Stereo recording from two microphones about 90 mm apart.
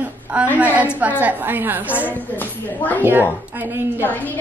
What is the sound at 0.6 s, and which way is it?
A woman's voice, 15° right (ahead or behind).